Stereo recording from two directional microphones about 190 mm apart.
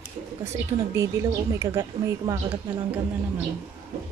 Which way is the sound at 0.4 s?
15° right (ahead or behind).